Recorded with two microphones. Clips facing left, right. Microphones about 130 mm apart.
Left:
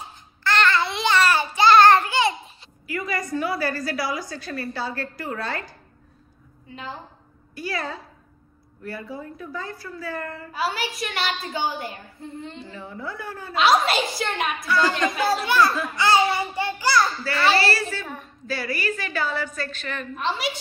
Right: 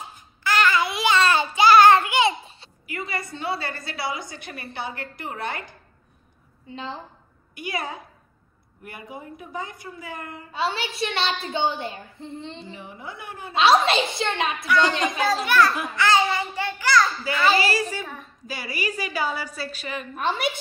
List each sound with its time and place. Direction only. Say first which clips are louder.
0.4 s babbling: even; 5° right (ahead or behind)
1.1 s child singing: left 1 dB; 20° right (ahead or behind)
2.0 s babbling: right 1 dB; 20° right (ahead or behind)
2.4 s a woman's voice: left 4 dB; 30° right (ahead or behind)
6.7 s a woman's voice: right 2 dB; 30° right (ahead or behind)
7.5 s a woman's voice: left 1 dB; 20° right (ahead or behind)
15.4 s a child's voice: right 1 dB; 15° left (ahead or behind)
16.0 s a sound: left 1 dB; 15° left (ahead or behind)
17.6 s a woman's voice: even; 15° right (ahead or behind)
18.0 s a woman's voice: left 2 dB; centre (ahead or behind)
18.5 s a woman's voice: left 3 dB; 15° right (ahead or behind)
20.2 s a woman's voice: right 2 dB; 50° right (ahead or behind)